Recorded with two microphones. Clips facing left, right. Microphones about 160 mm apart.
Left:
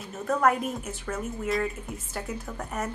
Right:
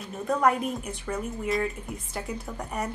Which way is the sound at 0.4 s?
5° left (ahead or behind).